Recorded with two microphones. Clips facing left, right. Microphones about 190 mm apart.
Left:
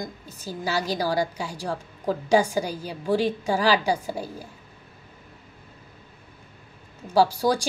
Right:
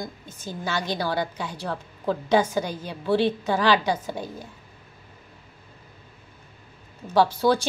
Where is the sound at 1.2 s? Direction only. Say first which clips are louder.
Left 2 dB; 10° left (ahead or behind).